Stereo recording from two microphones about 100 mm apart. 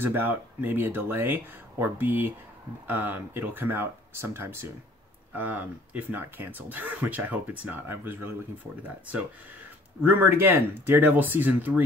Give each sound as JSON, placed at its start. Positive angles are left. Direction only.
{"t": 0.0, "sound": "speech", "side_deg": -20}